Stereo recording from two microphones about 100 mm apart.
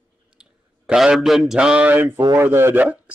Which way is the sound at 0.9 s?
5° right (ahead or behind).